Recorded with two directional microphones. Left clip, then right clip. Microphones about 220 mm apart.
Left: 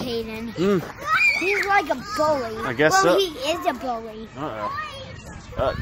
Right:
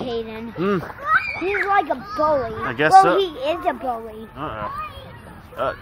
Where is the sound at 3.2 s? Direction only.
25° left (ahead or behind).